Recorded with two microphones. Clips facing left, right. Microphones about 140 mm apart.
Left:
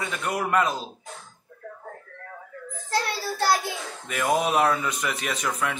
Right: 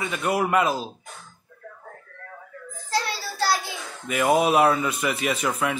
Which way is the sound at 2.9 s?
50° left (ahead or behind).